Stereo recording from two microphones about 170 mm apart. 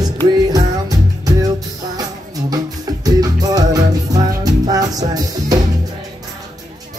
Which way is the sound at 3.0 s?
20° right (ahead or behind).